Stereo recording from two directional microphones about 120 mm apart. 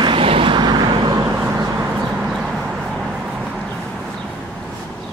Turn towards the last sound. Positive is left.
turn(degrees=-5)  # may be behind; listen again after turning